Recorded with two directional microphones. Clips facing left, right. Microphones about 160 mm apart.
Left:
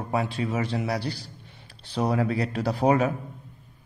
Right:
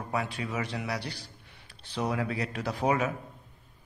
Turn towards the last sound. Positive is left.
turn(degrees=35)  # may be behind; listen again after turning